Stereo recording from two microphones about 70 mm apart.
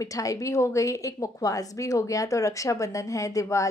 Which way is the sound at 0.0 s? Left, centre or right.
Left.